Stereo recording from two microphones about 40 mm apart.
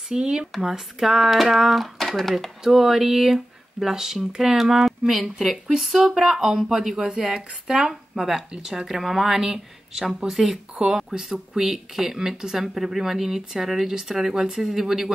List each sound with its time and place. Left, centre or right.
0.1 s speech: centre
2.6 s speech: centre